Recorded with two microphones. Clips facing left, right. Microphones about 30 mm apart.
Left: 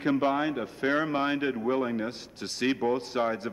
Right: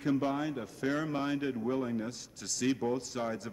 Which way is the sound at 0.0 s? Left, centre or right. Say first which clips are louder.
Left 5 dB; left.